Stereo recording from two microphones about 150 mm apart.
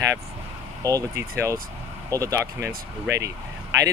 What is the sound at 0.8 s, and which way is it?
Speech, 20° right (ahead or behind).